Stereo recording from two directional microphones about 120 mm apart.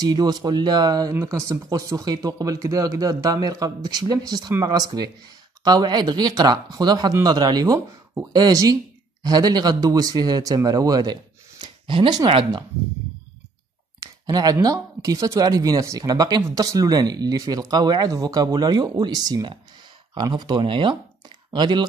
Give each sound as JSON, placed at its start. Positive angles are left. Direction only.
{"t": 0.0, "sound": "a man's voice", "side_deg": -35}
{"t": 13.9, "sound": "speech", "side_deg": -30}